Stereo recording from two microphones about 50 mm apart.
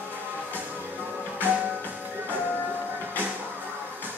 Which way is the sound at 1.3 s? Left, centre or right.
Right.